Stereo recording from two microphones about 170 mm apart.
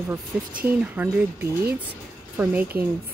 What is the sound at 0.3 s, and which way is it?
Speech, 5° right (ahead or behind).